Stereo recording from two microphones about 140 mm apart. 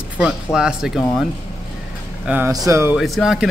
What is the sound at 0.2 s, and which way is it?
Speech, 5° right (ahead or behind).